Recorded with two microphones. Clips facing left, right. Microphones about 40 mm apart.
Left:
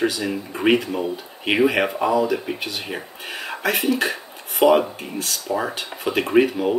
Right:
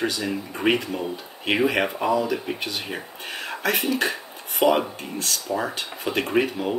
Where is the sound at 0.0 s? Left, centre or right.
Centre.